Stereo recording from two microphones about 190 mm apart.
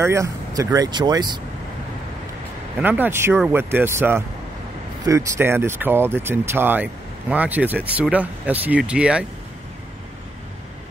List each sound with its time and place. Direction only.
0.0 s speech: 15° right (ahead or behind)
2.8 s speech: 10° right (ahead or behind)